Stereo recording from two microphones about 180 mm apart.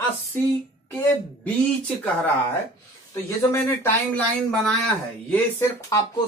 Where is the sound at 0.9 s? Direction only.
10° left (ahead or behind).